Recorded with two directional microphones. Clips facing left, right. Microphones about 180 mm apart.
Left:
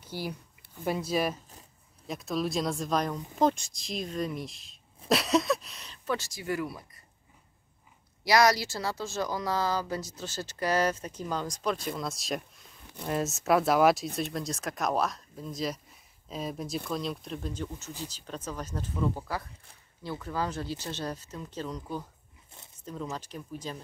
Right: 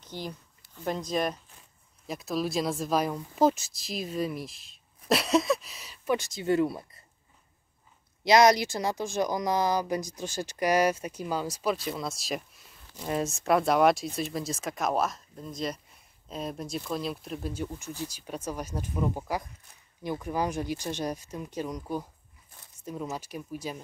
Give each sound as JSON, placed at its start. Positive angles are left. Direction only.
{"t": 0.0, "sound": "a woman's voice", "side_deg": 10}
{"t": 6.1, "sound": "speech", "side_deg": -20}
{"t": 8.2, "sound": "a woman's voice", "side_deg": -20}